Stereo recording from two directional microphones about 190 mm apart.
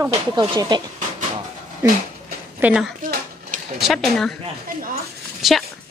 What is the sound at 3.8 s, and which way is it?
Speech, centre (ahead or behind).